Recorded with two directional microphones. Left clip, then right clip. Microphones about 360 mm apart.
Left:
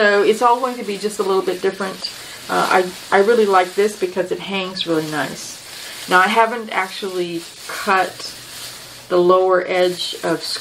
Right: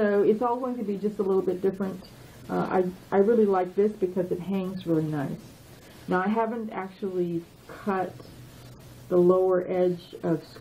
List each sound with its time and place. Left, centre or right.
0.0 s speech: centre
9.1 s speech: centre